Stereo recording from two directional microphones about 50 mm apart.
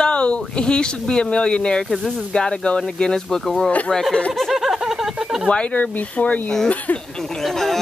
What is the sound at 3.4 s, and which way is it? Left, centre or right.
Speech, centre.